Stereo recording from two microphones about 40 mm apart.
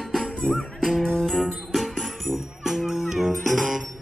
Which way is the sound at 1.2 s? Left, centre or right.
Centre.